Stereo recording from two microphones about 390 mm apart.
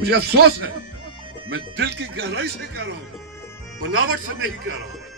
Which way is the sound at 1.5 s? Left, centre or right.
Right.